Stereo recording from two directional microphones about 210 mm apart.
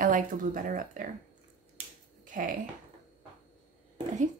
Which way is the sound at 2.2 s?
40° right (ahead or behind).